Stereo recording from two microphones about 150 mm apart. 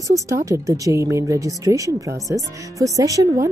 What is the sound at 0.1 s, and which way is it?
Speech, 20° right (ahead or behind).